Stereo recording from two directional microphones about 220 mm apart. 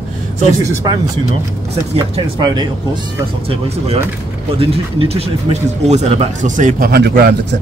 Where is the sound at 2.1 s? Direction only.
20° right (ahead or behind).